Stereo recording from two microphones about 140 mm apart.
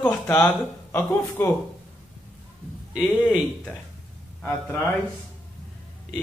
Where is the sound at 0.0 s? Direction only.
15° left (ahead or behind).